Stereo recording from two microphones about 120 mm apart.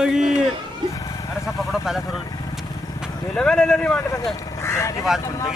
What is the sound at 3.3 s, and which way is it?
Speech, 5° left (ahead or behind).